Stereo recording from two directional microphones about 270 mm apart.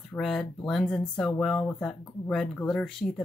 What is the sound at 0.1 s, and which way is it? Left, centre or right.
Speech, centre.